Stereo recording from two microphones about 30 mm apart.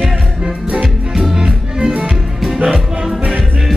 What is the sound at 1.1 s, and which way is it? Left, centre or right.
Music, centre.